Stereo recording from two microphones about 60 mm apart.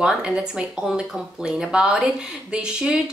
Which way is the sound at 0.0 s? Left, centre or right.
Centre.